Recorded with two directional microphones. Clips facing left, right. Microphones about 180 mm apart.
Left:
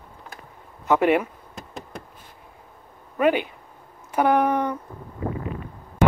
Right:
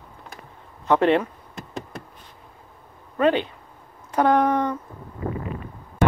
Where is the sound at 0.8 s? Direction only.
10° left (ahead or behind).